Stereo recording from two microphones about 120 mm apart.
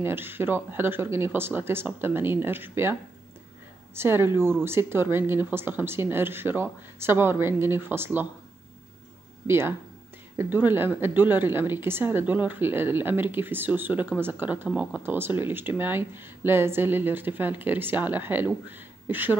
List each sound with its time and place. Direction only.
0.0 s speech: 20° right (ahead or behind)
9.5 s speech: 20° right (ahead or behind)